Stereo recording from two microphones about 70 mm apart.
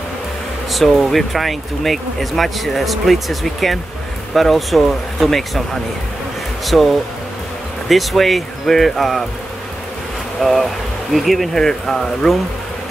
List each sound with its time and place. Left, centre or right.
0.7 s speech: centre
6.6 s speech: centre
7.9 s speech: centre
10.4 s speech: centre